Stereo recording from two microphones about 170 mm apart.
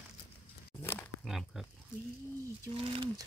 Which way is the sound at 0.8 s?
15° left (ahead or behind).